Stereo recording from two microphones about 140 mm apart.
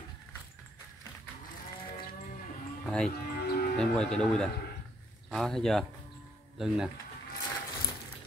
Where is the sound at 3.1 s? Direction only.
90° left.